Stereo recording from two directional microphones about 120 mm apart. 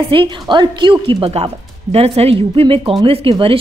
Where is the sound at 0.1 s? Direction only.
40° right (ahead or behind).